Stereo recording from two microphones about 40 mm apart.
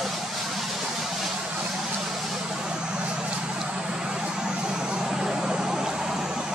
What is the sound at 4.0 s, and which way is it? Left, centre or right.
Vehicle, centre.